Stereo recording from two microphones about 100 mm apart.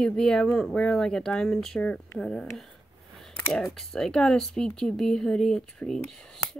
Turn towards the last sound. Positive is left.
turn(degrees=5)  # may be behind; listen again after turning